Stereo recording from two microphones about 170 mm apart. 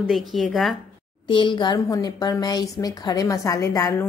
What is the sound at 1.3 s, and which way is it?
A woman's voice, 30° left (ahead or behind).